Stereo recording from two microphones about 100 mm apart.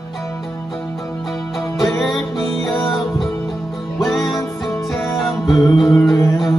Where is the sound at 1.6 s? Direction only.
30° left (ahead or behind).